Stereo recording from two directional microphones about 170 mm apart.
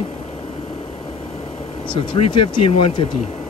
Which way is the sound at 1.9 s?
30° left (ahead or behind).